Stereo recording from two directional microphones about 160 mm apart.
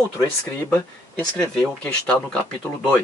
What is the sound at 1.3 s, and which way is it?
A man's voice, 5° left (ahead or behind).